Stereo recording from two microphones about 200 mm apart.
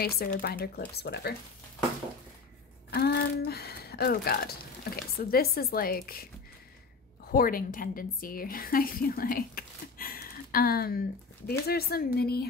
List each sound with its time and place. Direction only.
0.0 s speech: 50° left (ahead or behind)
2.9 s speech: 55° left (ahead or behind)
7.2 s a woman's voice: 45° left (ahead or behind)